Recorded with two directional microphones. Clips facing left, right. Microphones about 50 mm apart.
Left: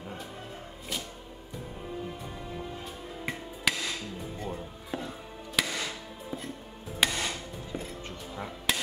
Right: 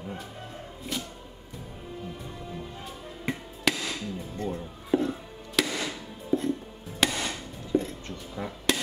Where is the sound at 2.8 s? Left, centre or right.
Centre.